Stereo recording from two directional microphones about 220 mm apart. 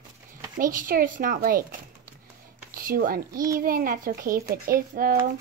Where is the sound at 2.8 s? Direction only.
40° right (ahead or behind).